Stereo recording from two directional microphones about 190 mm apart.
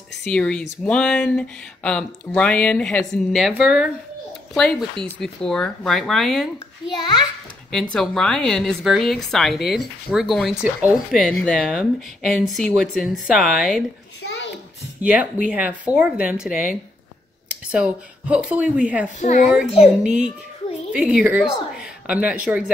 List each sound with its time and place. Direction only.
0.2 s speech: 5° left (ahead or behind)
7.7 s speech: 5° left (ahead or behind)
15.0 s speech: 5° right (ahead or behind)
19.1 s a child's voice: 40° left (ahead or behind)
20.0 s speech: 5° right (ahead or behind)